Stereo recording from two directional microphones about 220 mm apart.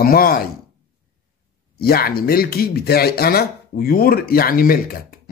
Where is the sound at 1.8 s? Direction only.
45° left (ahead or behind).